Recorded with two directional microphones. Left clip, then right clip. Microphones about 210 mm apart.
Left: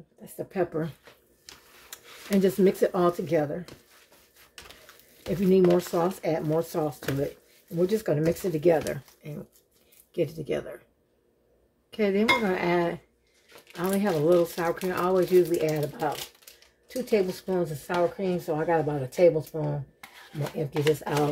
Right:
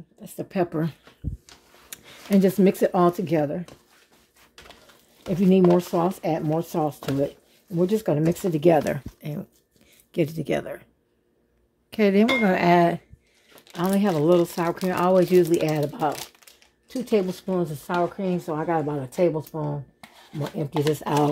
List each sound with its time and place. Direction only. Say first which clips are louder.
0.2 s a woman's voice: right 3 dB; 50° right (ahead or behind)
1.9 s speech: right 4 dB; 35° right (ahead or behind)
5.3 s speech: right 2 dB; 25° right (ahead or behind); by 10.8 s 45° right (ahead or behind)
11.9 s speech: right 3 dB; 45° right (ahead or behind)
17.0 s speech: right 2 dB; 30° right (ahead or behind)
20.9 s speech: right 4 dB; 40° right (ahead or behind)